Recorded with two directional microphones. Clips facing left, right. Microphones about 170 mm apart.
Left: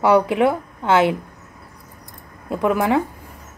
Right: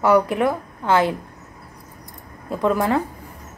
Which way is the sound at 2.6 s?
15° left (ahead or behind).